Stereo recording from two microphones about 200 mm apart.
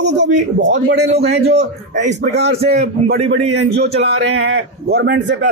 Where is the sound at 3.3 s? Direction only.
60° right (ahead or behind).